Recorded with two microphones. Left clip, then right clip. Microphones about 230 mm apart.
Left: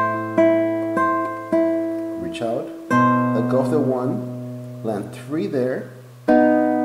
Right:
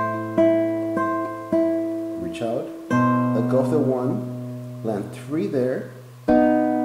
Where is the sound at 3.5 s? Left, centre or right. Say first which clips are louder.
Even; left.